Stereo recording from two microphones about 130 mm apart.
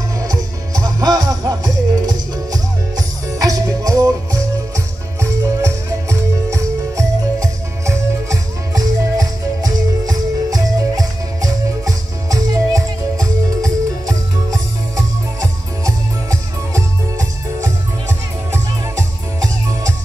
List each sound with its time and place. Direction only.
0.2 s music: 30° right (ahead or behind)